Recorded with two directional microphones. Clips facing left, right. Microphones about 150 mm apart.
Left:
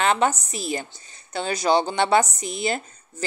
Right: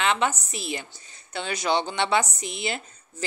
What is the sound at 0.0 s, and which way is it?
Speech, 40° left (ahead or behind).